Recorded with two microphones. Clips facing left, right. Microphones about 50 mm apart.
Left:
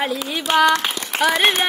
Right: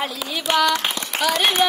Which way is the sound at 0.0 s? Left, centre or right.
Centre.